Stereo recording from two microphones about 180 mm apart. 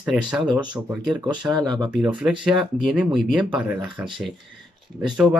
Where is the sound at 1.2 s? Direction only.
25° right (ahead or behind).